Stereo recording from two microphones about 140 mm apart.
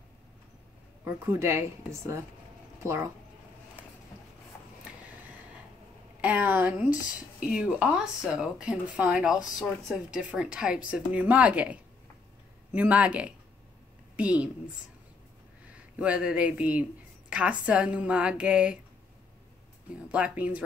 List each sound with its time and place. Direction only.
1.0 s speech: 20° right (ahead or behind)
6.2 s a woman's voice: 10° right (ahead or behind)
16.0 s a woman's voice: 10° right (ahead or behind)
20.1 s a woman's voice: 10° right (ahead or behind)